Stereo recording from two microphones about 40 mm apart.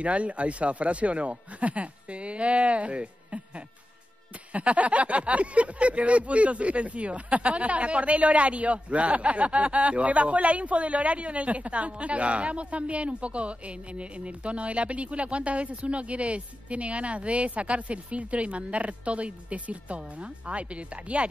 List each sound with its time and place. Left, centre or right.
0.0 s speech: right
4.5 s speech: right